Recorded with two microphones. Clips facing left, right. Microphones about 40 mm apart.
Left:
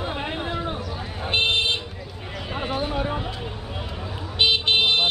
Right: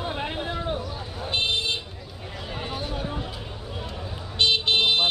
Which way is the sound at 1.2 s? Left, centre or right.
Left.